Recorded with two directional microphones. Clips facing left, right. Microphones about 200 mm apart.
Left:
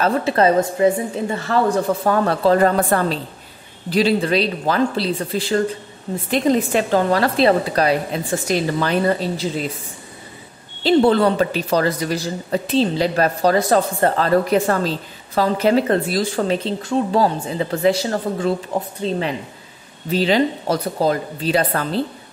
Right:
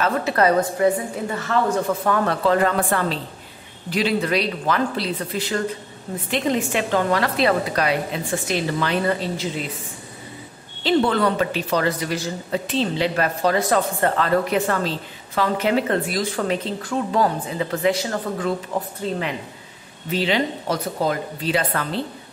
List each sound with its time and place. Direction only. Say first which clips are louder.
0.0 s a woman's voice: left 3 dB; 25° left (ahead or behind)
10.8 s a woman's voice: left 5 dB; 35° left (ahead or behind)
20.1 s speech: left 5 dB; 40° left (ahead or behind)